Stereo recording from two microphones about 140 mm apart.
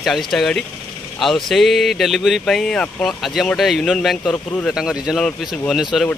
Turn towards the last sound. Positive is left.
turn(degrees=0)  # may be behind; listen again after turning